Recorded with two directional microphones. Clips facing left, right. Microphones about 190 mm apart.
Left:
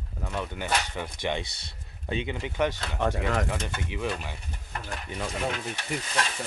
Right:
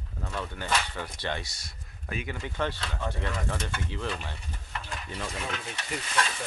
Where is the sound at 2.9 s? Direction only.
90° left.